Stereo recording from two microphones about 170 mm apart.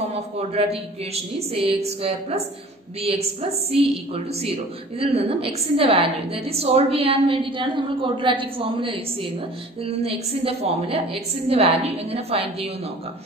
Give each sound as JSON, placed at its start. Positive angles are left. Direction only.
{"t": 0.1, "sound": "a woman's voice", "side_deg": -35}